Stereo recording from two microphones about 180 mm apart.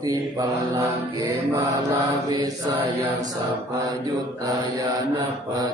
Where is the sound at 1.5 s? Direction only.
15° right (ahead or behind).